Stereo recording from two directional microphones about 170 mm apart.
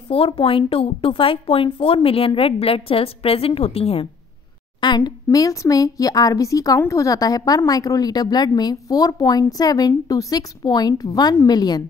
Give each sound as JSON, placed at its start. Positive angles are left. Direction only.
{"t": 0.1, "sound": "a woman's voice", "side_deg": 35}